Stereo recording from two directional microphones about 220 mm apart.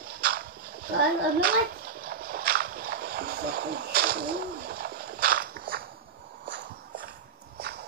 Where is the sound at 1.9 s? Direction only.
45° right (ahead or behind).